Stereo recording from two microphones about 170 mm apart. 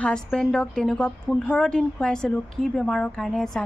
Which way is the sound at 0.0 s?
5° left (ahead or behind).